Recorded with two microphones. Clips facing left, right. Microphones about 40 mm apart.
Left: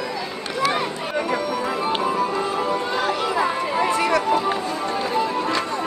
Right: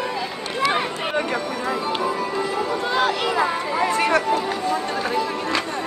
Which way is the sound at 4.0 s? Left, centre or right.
Right.